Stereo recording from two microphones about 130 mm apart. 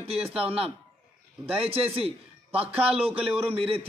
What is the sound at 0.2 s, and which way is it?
Speech, 5° right (ahead or behind).